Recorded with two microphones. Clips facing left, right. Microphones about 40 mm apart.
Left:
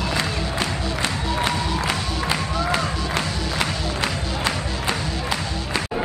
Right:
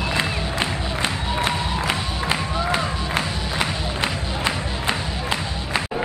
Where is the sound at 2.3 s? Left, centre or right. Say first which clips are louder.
Right 1 dB; centre.